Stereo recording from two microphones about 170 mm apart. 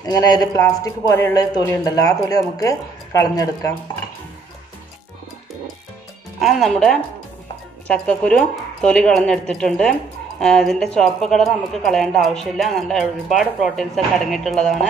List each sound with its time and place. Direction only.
0.0 s speech: 20° left (ahead or behind)
6.4 s a woman's voice: centre (ahead or behind)